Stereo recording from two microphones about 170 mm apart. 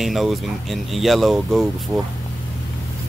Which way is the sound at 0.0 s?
Centre (ahead or behind).